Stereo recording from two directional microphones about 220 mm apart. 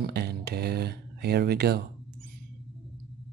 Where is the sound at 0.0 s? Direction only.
45° right (ahead or behind).